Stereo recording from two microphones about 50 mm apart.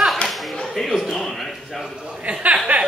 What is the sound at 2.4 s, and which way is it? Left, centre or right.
Chuckle, right.